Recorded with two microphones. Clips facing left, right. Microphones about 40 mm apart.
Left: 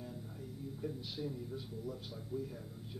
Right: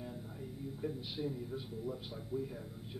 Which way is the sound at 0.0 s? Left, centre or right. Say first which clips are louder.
Right 2 dB; centre.